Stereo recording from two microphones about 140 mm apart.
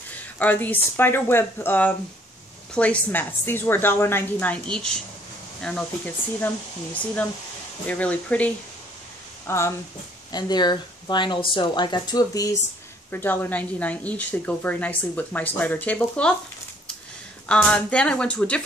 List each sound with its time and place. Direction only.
0.1 s a woman's voice: 10° left (ahead or behind)
10.3 s speech: 30° left (ahead or behind)
13.1 s a woman's voice: 15° left (ahead or behind)
17.5 s a woman's voice: 5° left (ahead or behind)